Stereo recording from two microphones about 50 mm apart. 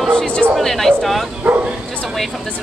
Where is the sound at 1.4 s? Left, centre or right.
Right.